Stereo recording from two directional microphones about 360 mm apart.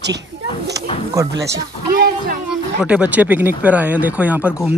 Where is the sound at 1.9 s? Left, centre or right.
Right.